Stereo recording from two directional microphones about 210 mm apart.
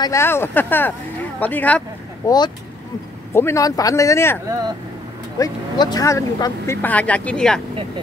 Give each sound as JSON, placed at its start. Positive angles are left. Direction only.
{"t": 0.0, "sound": "speech", "side_deg": 15}
{"t": 2.2, "sound": "speech", "side_deg": 20}
{"t": 5.4, "sound": "speech", "side_deg": 20}